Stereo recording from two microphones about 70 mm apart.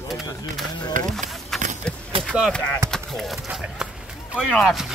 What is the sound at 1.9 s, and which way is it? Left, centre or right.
Speech, centre.